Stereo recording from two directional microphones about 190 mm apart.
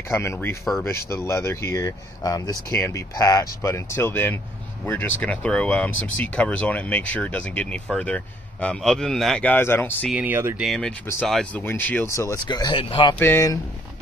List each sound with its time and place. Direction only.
0.1 s speech: 15° left (ahead or behind)
10.1 s speech: 10° right (ahead or behind)
10.6 s speech: centre (ahead or behind); by 13.1 s 25° left (ahead or behind)
13.2 s speech: 15° left (ahead or behind)